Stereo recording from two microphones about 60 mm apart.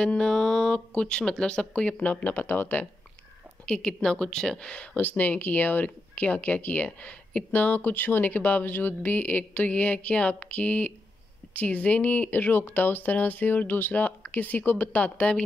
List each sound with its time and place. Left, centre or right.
0.0 s speech: centre; by 2.9 s left
3.6 s speech: centre
4.9 s speech: left